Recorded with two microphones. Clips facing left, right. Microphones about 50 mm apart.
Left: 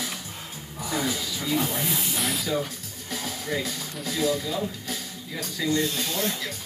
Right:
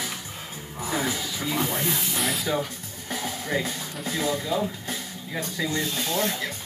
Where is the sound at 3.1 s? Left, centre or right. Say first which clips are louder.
Right 2 dB; right.